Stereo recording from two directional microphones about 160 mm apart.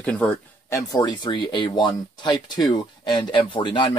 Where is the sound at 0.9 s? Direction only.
25° left (ahead or behind).